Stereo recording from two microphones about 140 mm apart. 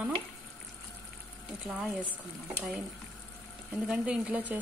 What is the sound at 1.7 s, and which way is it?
Speech, 5° right (ahead or behind).